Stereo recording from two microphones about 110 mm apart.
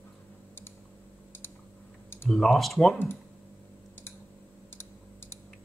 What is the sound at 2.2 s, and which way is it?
Speech, centre (ahead or behind).